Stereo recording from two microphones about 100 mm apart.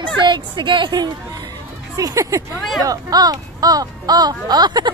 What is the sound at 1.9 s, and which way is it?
Speech, 35° right (ahead or behind).